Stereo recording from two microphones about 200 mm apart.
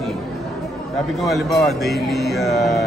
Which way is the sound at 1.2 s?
Centre (ahead or behind).